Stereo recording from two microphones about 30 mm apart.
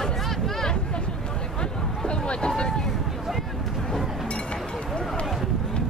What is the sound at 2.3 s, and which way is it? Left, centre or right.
Boat, left.